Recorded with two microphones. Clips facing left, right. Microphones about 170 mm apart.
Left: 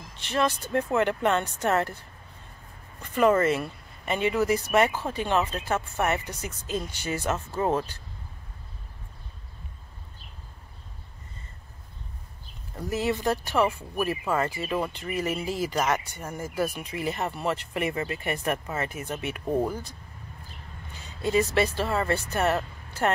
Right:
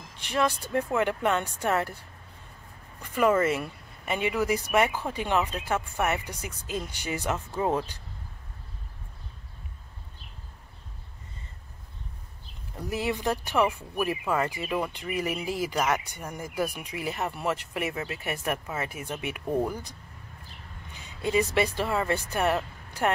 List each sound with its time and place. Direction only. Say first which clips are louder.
0.2 s speech: left 1 dB; 10° right (ahead or behind)
3.0 s speech: left 2 dB; 5° right (ahead or behind)
12.7 s speech: left 2 dB; 10° right (ahead or behind)
19.4 s speech: left 1 dB; 5° left (ahead or behind)
19.7 s speech: left 2 dB; 15° right (ahead or behind)
20.9 s a sound: left 1 dB; 15° right (ahead or behind)
21.5 s speech: left 1 dB; 15° right (ahead or behind)